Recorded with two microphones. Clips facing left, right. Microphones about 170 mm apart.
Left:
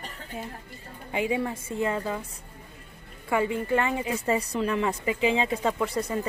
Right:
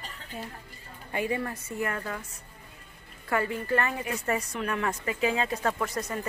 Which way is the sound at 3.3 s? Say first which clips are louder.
Left 3 dB; 15° left (ahead or behind).